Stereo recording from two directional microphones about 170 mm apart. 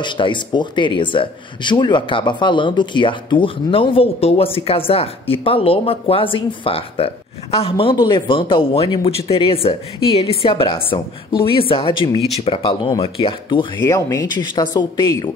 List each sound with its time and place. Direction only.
0.0 s a man's voice: 30° left (ahead or behind)